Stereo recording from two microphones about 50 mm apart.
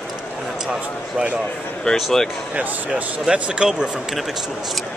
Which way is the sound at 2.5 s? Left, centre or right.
Right.